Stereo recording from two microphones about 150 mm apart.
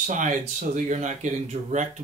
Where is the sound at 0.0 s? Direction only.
55° right (ahead or behind).